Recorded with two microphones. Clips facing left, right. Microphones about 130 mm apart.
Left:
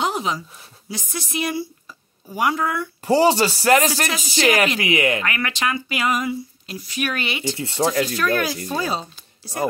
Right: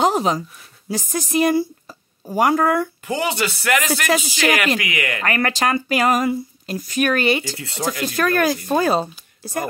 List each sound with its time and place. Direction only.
0.0 s a sound: 40° right (ahead or behind)
0.8 s speech: 45° right (ahead or behind)
3.1 s speech: 35° left (ahead or behind)
5.2 s speech: 45° right (ahead or behind)
7.4 s speech: 25° left (ahead or behind)
8.0 s speech: 45° right (ahead or behind)